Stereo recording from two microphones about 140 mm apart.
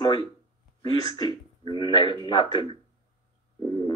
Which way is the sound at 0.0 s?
30° left (ahead or behind).